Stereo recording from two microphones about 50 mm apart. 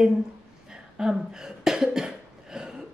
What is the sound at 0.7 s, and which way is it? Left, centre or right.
Cough, centre.